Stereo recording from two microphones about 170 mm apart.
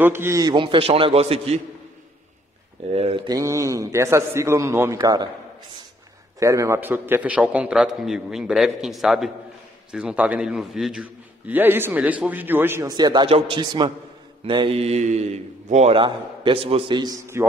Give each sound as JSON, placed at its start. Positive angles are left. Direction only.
{"t": 0.0, "sound": "a man's voice", "side_deg": -15}
{"t": 2.9, "sound": "a man's voice", "side_deg": -35}
{"t": 3.3, "sound": "a man's voice", "side_deg": -20}
{"t": 6.4, "sound": "a man's voice", "side_deg": -20}